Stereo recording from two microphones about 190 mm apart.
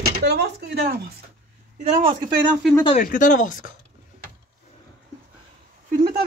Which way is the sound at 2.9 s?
45° left (ahead or behind).